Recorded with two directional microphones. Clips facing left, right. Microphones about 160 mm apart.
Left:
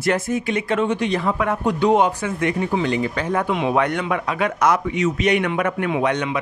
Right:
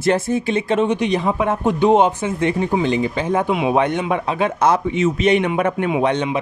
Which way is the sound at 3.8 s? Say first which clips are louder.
Right 2 dB; 25° right (ahead or behind).